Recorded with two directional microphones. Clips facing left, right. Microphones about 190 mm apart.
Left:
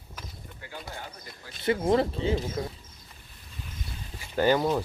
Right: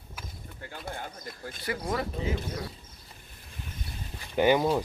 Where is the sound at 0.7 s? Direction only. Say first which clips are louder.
Right 2 dB; 50° right (ahead or behind).